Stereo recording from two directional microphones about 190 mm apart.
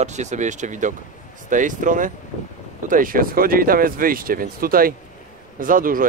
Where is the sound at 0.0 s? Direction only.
40° right (ahead or behind).